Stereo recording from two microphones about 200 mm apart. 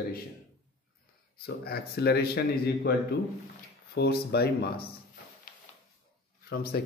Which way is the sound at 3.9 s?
55° left (ahead or behind).